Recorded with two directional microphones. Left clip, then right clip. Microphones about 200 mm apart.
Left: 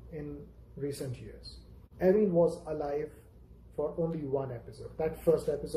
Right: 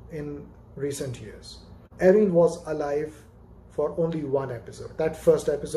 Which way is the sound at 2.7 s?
Centre (ahead or behind).